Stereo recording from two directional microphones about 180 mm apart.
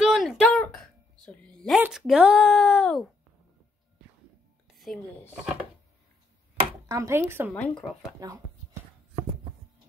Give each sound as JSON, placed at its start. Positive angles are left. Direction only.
{"t": 0.0, "sound": "a sound", "side_deg": 0}
{"t": 1.2, "sound": "speech", "side_deg": 5}
{"t": 4.6, "sound": "a sound", "side_deg": 0}
{"t": 5.3, "sound": "speech", "side_deg": -5}
{"t": 6.9, "sound": "speech", "side_deg": -15}
{"t": 7.6, "sound": "speech", "side_deg": 5}
{"t": 8.2, "sound": "speech", "side_deg": -20}